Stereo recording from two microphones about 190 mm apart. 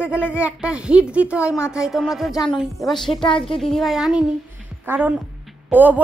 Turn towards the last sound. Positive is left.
turn(degrees=-10)  # may be behind; listen again after turning